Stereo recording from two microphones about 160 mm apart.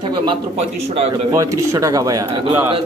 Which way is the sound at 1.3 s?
20° right (ahead or behind).